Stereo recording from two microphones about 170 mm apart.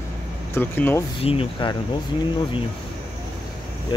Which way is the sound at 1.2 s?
35° left (ahead or behind).